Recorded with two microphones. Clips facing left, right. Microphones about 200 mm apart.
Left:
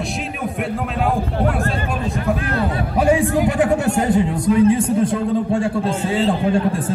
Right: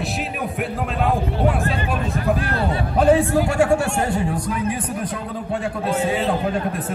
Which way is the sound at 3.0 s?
15° left (ahead or behind).